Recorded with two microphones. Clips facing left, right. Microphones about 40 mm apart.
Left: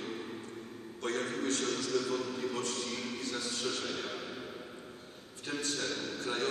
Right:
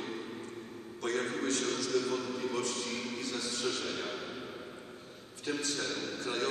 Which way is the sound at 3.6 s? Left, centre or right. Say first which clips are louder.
Right 1 dB; right.